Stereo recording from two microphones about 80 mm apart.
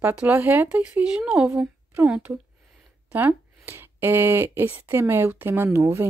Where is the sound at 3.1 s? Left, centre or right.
Right.